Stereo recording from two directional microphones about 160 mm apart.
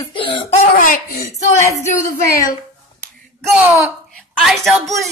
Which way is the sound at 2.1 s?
65° left (ahead or behind).